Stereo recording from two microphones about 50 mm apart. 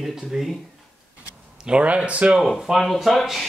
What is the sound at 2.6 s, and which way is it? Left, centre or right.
Speech, centre.